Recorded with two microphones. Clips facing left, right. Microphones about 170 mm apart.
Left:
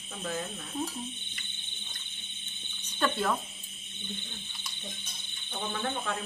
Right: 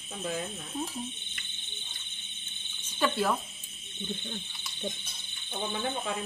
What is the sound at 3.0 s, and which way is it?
Cricket, 5° right (ahead or behind).